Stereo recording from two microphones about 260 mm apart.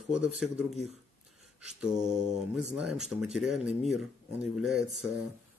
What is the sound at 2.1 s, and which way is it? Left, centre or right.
Mantra, right.